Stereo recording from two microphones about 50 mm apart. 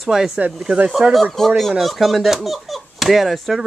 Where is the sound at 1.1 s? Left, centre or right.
Centre.